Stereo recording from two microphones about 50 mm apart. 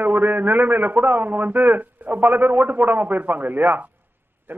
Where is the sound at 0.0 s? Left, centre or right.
Right.